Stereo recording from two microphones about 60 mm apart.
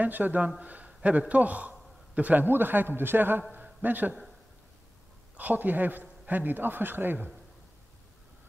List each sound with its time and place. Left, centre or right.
0.0 s a man's voice: right
0.8 s a sound: right
1.3 s a man's voice: right
5.4 s speech: right